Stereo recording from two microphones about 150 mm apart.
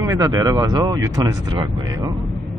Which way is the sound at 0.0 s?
25° right (ahead or behind).